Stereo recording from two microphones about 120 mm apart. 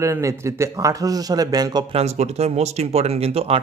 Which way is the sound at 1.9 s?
60° right (ahead or behind).